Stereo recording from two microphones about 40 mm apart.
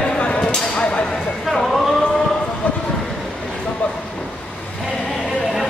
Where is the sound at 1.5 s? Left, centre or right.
Centre.